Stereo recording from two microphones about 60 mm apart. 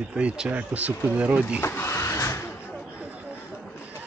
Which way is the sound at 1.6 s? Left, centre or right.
Left.